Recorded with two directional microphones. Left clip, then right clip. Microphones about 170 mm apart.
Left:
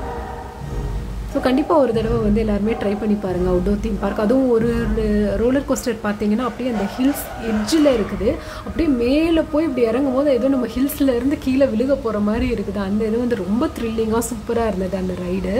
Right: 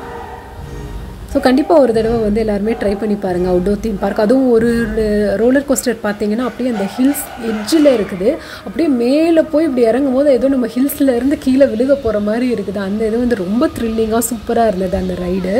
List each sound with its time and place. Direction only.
1.3 s a woman's voice: 25° right (ahead or behind)